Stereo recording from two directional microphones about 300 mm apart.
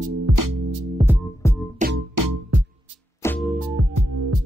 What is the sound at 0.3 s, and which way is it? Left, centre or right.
Music, right.